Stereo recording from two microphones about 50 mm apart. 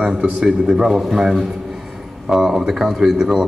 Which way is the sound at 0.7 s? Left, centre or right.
Centre.